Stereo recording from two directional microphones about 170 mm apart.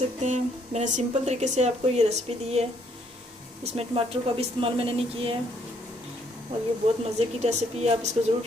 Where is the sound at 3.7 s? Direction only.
35° right (ahead or behind).